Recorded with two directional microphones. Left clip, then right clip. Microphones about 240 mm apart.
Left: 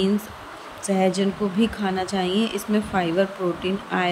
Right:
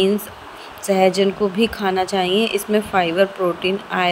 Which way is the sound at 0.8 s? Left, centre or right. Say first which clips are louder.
Right 7 dB; centre.